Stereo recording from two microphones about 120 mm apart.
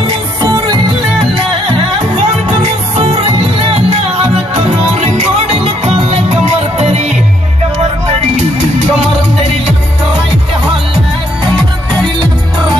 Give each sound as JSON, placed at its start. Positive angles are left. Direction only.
{"t": 3.0, "sound": "music", "side_deg": -50}
{"t": 4.6, "sound": "music", "side_deg": -65}